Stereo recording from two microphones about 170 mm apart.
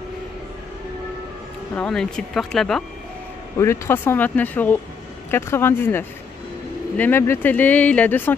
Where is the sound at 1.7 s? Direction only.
5° left (ahead or behind).